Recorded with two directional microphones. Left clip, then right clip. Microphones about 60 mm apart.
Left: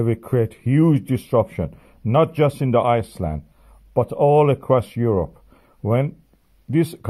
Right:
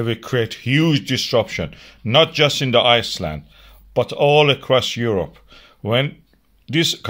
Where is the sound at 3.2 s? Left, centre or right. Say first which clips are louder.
Right 2 dB; centre.